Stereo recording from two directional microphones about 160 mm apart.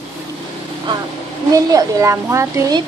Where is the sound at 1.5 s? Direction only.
20° right (ahead or behind).